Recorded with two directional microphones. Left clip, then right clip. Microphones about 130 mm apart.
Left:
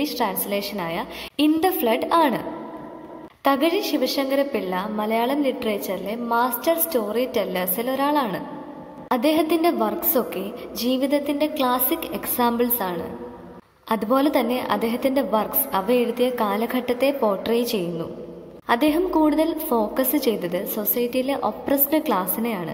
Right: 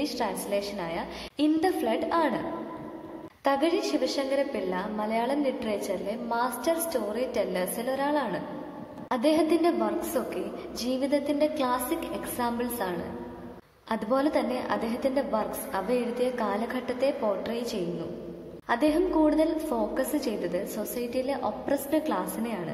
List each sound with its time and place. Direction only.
0.0 s a woman's voice: 25° left (ahead or behind)
3.4 s a woman's voice: 25° left (ahead or behind)
18.7 s a woman's voice: 25° left (ahead or behind)